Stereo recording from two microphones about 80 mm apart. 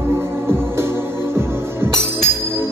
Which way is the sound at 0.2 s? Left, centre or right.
Right.